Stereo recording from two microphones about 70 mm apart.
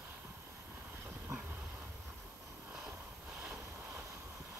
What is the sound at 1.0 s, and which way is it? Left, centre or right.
Train, right.